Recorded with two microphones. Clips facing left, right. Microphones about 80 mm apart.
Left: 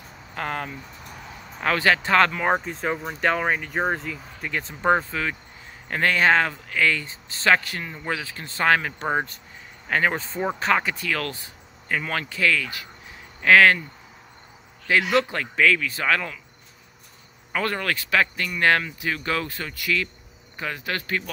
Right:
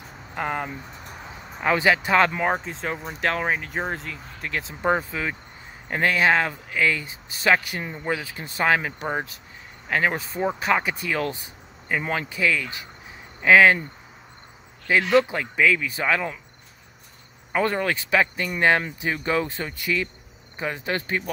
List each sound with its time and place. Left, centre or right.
0.3 s speech: centre
2.4 s speech: centre
15.1 s speech: centre
17.5 s speech: centre